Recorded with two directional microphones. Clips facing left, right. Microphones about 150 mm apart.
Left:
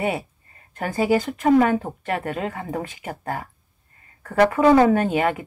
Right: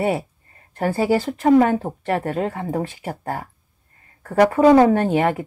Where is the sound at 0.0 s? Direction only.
40° right (ahead or behind).